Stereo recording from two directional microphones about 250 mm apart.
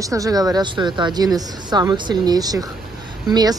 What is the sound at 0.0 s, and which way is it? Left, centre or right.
Speech, centre.